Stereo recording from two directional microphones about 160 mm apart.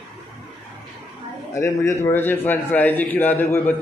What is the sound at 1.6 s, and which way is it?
A man's voice, 20° left (ahead or behind).